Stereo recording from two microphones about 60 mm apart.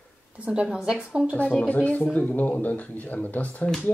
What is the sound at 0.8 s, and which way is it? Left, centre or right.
Speech, centre.